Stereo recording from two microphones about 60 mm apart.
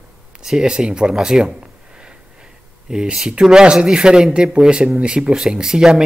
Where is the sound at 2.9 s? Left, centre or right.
Centre.